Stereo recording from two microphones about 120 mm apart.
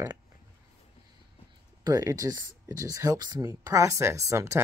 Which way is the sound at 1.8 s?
30° right (ahead or behind).